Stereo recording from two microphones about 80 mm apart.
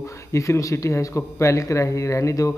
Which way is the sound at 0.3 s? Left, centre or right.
Left.